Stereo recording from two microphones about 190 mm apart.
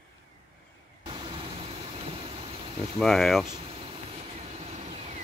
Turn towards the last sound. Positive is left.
turn(degrees=-35)  # may be behind; listen again after turning